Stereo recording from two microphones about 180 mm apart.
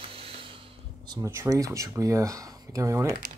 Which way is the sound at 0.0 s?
30° right (ahead or behind).